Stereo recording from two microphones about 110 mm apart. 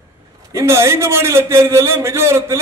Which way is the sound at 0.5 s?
25° right (ahead or behind).